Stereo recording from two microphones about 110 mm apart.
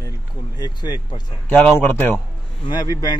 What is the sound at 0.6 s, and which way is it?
Speech, 35° left (ahead or behind).